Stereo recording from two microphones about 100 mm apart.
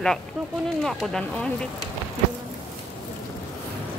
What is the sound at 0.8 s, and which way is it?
Speech, 5° left (ahead or behind).